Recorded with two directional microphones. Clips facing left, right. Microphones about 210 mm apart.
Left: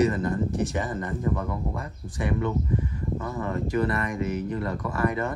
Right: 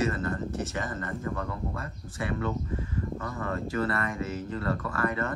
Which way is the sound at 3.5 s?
15° left (ahead or behind).